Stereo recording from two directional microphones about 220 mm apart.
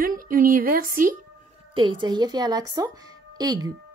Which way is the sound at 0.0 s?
40° right (ahead or behind).